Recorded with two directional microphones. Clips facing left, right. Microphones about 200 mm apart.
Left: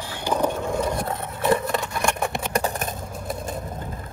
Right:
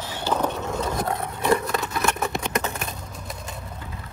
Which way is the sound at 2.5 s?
35° left (ahead or behind).